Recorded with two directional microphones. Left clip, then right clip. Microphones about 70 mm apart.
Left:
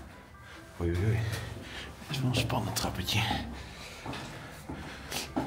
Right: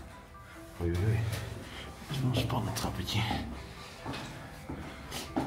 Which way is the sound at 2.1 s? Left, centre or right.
Left.